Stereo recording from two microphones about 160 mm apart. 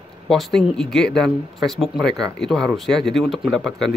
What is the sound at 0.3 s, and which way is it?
Speech, 5° left (ahead or behind).